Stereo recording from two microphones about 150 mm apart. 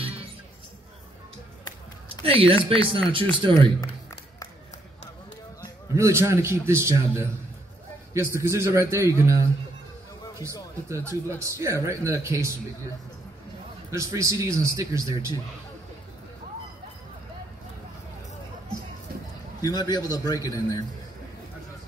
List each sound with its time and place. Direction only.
0.0 s music: 40° right (ahead or behind)
2.2 s speech: 40° right (ahead or behind)
5.6 s a man's voice: 20° right (ahead or behind)
10.9 s a man's voice: 20° right (ahead or behind)
13.8 s a man's voice: 20° right (ahead or behind)
19.6 s a man's voice: 25° left (ahead or behind)